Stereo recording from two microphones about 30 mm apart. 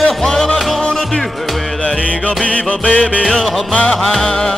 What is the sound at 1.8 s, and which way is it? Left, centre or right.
Music, left.